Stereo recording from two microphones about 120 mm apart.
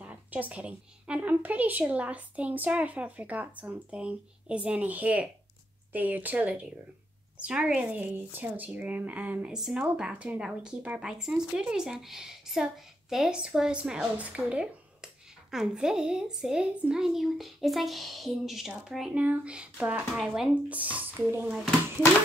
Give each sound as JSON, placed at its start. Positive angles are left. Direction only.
{"t": 0.0, "sound": "speech", "side_deg": -15}
{"t": 21.5, "sound": "speech", "side_deg": 0}